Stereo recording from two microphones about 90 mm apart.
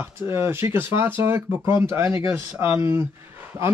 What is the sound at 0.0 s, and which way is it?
Speech, 25° right (ahead or behind).